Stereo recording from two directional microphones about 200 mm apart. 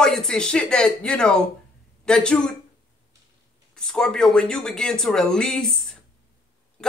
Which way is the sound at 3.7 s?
5° left (ahead or behind).